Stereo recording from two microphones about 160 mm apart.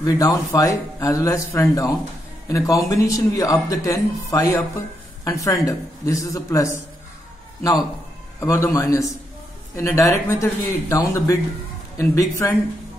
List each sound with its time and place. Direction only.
0.2 s speech: 20° left (ahead or behind)
8.4 s speech: 20° left (ahead or behind)